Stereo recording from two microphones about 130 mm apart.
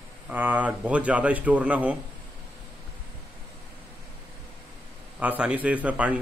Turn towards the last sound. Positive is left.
turn(degrees=-10)  # may be behind; listen again after turning